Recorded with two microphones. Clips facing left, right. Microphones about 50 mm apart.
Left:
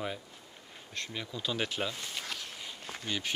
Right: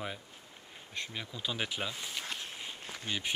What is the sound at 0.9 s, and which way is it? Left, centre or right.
Speech, centre.